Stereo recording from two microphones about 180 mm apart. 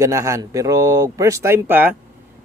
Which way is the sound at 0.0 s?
20° right (ahead or behind).